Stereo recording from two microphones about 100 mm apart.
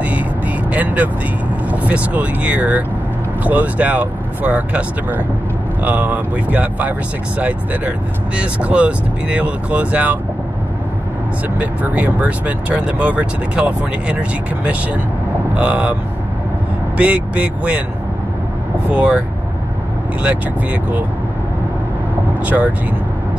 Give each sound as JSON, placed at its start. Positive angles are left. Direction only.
{"t": 0.7, "sound": "vehicle", "side_deg": -15}
{"t": 1.7, "sound": "speech", "side_deg": -15}
{"t": 11.5, "sound": "speech", "side_deg": -15}
{"t": 15.5, "sound": "speech", "side_deg": -15}
{"t": 18.9, "sound": "speech", "side_deg": -15}
{"t": 20.2, "sound": "speech", "side_deg": -15}
{"t": 22.5, "sound": "speech", "side_deg": -15}